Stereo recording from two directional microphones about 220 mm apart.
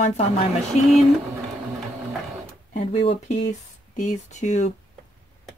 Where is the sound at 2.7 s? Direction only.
25° left (ahead or behind).